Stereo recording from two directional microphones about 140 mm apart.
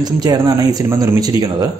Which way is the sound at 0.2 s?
25° right (ahead or behind).